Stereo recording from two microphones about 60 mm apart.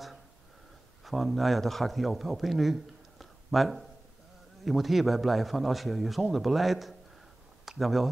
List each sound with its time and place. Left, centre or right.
1.0 s a man's voice: centre